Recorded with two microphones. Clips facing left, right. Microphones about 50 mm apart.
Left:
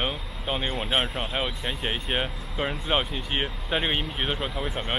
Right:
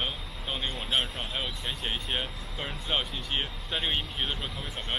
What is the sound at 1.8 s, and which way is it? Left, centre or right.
Speech, centre.